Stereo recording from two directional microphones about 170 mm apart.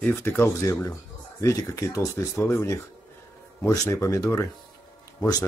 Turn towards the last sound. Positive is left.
turn(degrees=20)  # may be behind; listen again after turning